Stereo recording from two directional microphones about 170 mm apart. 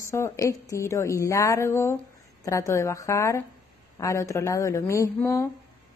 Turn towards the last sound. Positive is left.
turn(degrees=15)  # may be behind; listen again after turning